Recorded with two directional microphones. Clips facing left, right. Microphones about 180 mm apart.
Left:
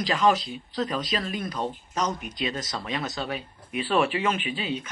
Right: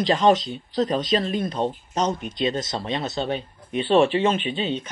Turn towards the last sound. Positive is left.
turn(degrees=-30)  # may be behind; listen again after turning